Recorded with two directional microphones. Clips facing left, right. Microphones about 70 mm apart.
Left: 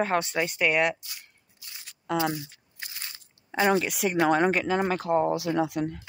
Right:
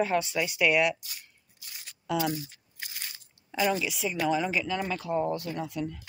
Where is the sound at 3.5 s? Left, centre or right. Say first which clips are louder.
Left 4 dB; left.